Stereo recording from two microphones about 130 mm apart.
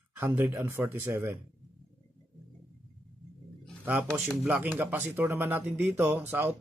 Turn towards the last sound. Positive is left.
turn(degrees=-15)  # may be behind; listen again after turning